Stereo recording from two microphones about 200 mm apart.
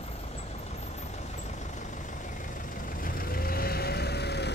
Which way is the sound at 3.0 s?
45° left (ahead or behind).